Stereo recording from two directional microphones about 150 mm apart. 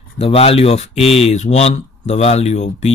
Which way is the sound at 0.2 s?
40° left (ahead or behind).